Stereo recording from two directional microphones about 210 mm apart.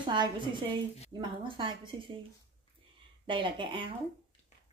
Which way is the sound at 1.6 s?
20° right (ahead or behind).